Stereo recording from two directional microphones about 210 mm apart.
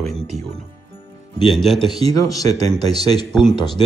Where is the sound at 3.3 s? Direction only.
5° left (ahead or behind).